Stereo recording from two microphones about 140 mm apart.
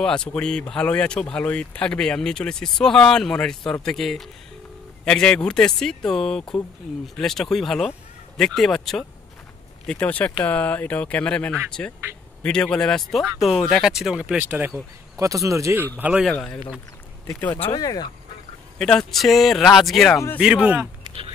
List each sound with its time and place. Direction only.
0.0 s speech: 5° left (ahead or behind); by 14.7 s 10° right (ahead or behind)
15.1 s speech: 20° right (ahead or behind)
16.0 s speech: 10° right (ahead or behind)
16.3 s speech: 5° left (ahead or behind)
17.7 s speech: 25° left (ahead or behind)
18.8 s speech: 5° left (ahead or behind)